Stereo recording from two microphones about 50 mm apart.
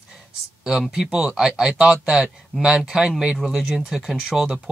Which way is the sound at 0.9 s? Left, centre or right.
Centre.